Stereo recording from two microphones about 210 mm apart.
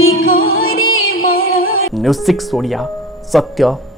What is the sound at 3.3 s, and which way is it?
Speech, centre (ahead or behind).